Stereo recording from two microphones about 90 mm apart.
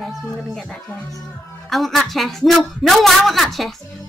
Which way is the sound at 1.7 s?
Centre (ahead or behind).